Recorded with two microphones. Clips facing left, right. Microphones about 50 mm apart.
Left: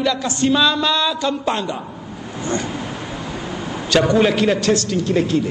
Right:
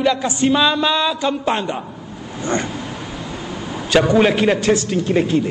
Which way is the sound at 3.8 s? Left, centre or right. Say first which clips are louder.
Right 1 dB; centre.